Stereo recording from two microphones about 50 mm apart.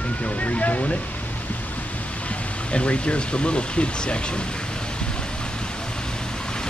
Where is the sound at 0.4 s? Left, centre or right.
Left.